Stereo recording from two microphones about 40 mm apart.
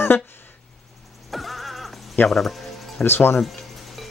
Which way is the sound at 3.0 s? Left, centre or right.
Left.